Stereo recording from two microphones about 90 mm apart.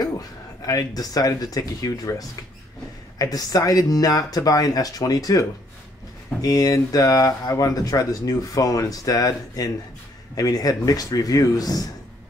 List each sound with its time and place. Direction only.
0.0 s speech: 40° left (ahead or behind)